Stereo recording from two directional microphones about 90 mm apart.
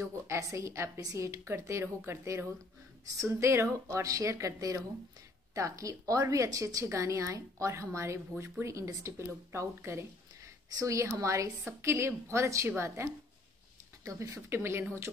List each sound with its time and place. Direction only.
0.0 s a woman's voice: 35° right (ahead or behind)